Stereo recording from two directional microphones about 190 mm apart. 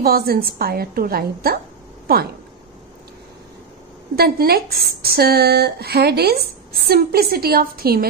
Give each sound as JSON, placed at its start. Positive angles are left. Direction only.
{"t": 0.0, "sound": "a woman's voice", "side_deg": -50}
{"t": 4.1, "sound": "a woman's voice", "side_deg": -55}